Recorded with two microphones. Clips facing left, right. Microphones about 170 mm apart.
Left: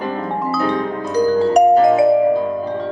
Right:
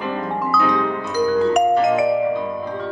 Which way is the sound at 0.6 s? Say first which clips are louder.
Even; 35° left (ahead or behind).